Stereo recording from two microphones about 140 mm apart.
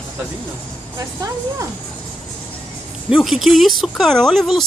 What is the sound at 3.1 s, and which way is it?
Speech, centre (ahead or behind).